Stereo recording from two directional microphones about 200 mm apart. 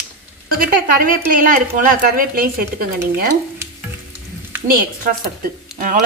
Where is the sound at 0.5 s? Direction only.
45° right (ahead or behind).